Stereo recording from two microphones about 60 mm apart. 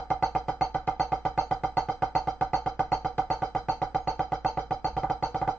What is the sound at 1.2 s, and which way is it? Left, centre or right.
Music, centre.